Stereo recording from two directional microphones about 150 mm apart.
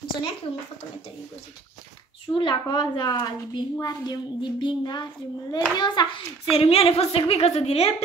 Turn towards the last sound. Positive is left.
turn(degrees=40)  # may be behind; listen again after turning